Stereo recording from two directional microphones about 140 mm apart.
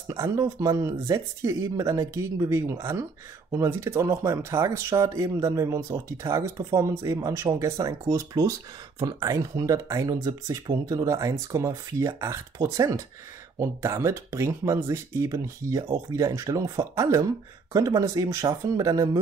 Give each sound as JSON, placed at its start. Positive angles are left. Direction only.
{"t": 0.1, "sound": "speech", "side_deg": -25}